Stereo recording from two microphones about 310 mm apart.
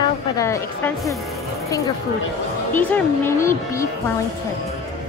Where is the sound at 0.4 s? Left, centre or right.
Centre.